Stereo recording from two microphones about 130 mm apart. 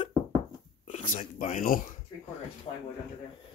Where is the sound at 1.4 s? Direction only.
85° left.